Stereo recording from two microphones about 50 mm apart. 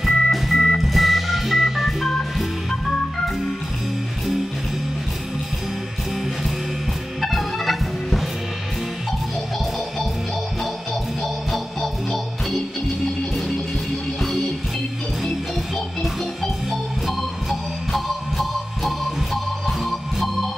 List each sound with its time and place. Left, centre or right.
0.0 s organ: centre
7.2 s music: centre
11.5 s music: centre
17.0 s music: centre